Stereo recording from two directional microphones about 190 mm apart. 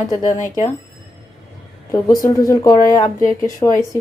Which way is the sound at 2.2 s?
15° left (ahead or behind).